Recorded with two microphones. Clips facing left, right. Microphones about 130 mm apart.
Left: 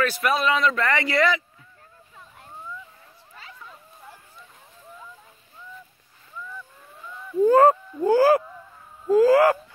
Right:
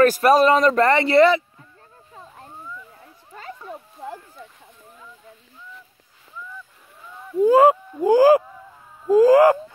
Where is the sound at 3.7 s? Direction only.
65° right (ahead or behind).